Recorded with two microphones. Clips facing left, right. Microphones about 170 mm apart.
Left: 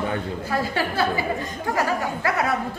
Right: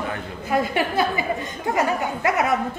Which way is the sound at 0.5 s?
20° right (ahead or behind).